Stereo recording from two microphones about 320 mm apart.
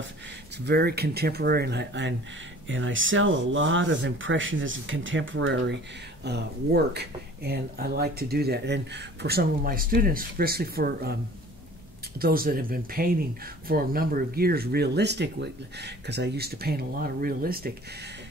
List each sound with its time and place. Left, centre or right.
0.7 s speech: right
12.2 s speech: right